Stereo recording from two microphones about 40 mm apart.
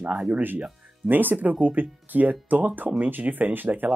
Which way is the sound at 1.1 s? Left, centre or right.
Right.